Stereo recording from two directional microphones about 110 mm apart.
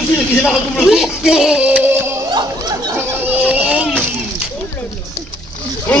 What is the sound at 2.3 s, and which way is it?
Speech, 40° right (ahead or behind).